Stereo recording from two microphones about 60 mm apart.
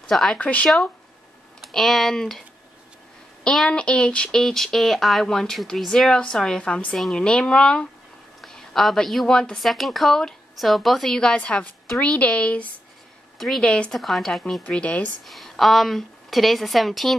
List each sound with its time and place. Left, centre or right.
0.0 s speech: centre
0.4 s a woman's voice: left
1.6 s speech: centre
3.6 s a woman's voice: centre
9.7 s a woman's voice: centre
11.3 s a woman's voice: left
13.9 s a woman's voice: centre
14.7 s a woman's voice: left
15.2 s a woman's voice: centre